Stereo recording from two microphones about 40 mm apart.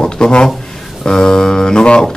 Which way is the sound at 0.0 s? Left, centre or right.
Left.